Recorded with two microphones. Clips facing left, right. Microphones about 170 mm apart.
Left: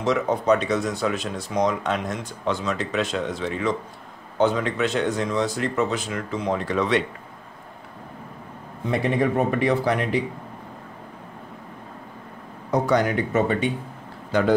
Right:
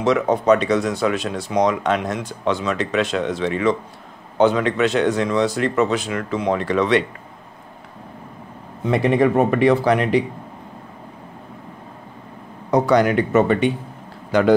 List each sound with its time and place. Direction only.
0.0 s speech: 75° right (ahead or behind)
9.2 s speech: 75° right (ahead or behind)
12.7 s speech: 80° right